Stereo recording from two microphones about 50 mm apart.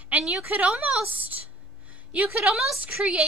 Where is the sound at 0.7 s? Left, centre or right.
Centre.